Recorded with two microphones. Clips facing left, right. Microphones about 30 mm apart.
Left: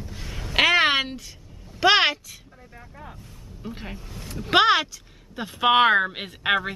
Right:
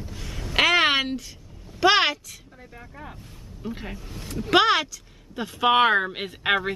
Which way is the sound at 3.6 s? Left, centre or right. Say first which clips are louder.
Right 2 dB; centre.